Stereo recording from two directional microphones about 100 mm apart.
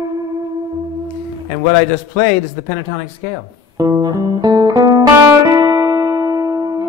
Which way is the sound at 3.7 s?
40° right (ahead or behind).